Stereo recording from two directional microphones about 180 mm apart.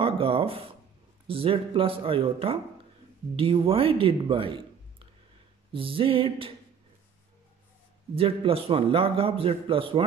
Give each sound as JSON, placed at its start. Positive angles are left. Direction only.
{"t": 0.0, "sound": "a man's voice", "side_deg": -30}
{"t": 5.7, "sound": "a sound", "side_deg": -30}
{"t": 8.1, "sound": "a man's voice", "side_deg": -30}